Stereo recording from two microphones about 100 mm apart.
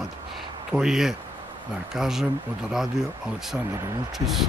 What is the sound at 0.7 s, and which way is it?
Speech, 5° right (ahead or behind).